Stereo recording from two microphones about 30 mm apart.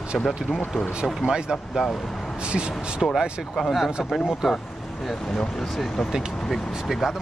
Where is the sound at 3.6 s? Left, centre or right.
Right.